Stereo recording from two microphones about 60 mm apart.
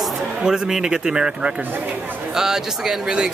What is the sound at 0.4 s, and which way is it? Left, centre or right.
Speech, centre.